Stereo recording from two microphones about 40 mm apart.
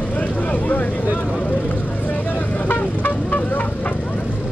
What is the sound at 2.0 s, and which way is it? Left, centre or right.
Vehicle, left.